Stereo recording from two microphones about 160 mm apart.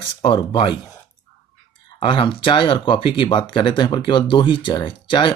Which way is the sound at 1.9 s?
30° left (ahead or behind).